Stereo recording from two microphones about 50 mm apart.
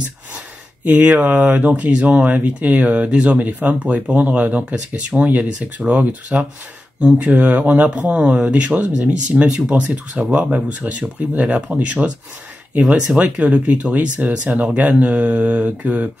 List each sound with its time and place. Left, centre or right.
1.0 s speech: right
1.3 s speech: right